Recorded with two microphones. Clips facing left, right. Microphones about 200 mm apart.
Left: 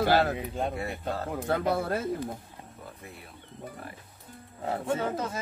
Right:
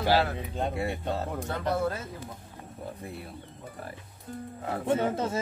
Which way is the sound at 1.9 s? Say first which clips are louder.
Left 4 dB; 55° left (ahead or behind).